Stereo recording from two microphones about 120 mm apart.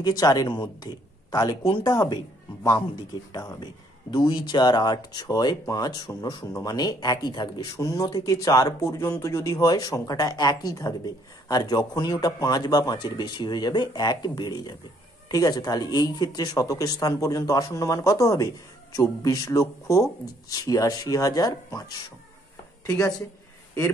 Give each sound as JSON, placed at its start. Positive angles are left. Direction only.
{"t": 0.0, "sound": "speech", "side_deg": 30}
{"t": 3.3, "sound": "speech", "side_deg": 35}
{"t": 22.8, "sound": "speech", "side_deg": 30}